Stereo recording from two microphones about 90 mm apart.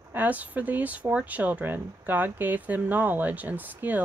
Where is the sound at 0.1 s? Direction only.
20° right (ahead or behind).